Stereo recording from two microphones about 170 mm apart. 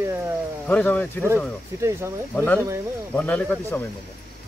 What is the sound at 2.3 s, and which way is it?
Speech, 10° left (ahead or behind).